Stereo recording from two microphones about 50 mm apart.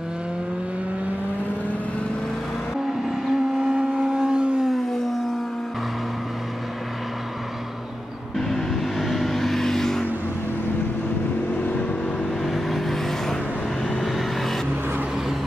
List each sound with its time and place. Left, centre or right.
3.3 s vehicle: centre
8.4 s vehicle: centre
12.4 s vehicle: centre